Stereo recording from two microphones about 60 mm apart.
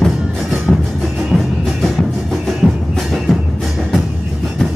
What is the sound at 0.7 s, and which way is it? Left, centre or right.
Music, centre.